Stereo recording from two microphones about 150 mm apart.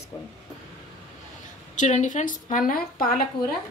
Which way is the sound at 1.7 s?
55° left (ahead or behind).